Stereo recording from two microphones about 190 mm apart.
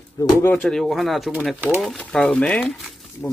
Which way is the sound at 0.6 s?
Centre (ahead or behind).